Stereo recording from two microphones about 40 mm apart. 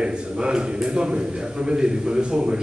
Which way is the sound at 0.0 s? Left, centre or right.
Right.